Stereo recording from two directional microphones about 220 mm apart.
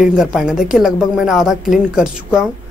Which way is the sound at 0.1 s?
Centre (ahead or behind).